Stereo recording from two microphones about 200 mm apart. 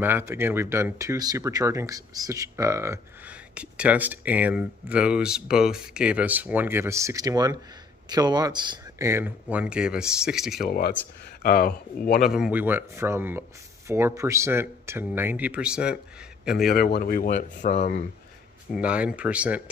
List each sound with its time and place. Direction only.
0.0 s speech: 10° right (ahead or behind)
10.6 s speech: 50° left (ahead or behind)
12.2 s speech: 5° right (ahead or behind)
16.6 s speech: 50° left (ahead or behind)
18.7 s speech: 5° right (ahead or behind)